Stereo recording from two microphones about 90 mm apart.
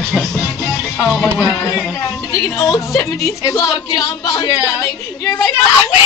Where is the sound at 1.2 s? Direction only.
Centre (ahead or behind).